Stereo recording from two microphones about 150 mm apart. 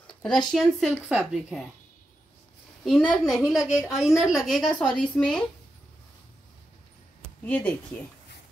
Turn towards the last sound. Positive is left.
turn(degrees=5)  # may be behind; listen again after turning